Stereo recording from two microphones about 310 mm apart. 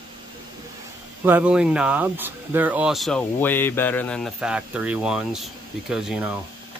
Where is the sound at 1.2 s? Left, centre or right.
Centre.